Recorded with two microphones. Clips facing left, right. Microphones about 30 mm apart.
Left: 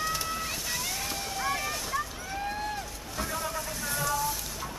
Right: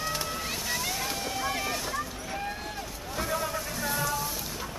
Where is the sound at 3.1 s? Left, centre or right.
Centre.